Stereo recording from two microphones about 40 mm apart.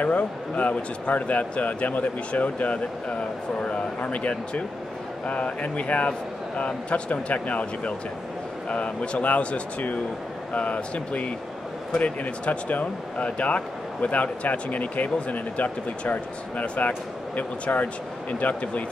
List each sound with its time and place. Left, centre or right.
0.0 s speech: left